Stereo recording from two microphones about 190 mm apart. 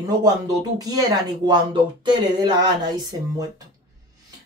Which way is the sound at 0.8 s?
20° right (ahead or behind).